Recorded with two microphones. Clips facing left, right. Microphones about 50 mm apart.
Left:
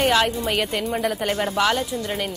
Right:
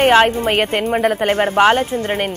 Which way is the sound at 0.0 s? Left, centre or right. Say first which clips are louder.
Right 8 dB; right.